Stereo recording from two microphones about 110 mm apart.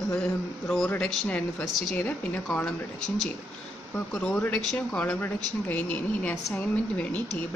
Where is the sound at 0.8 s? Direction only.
15° left (ahead or behind).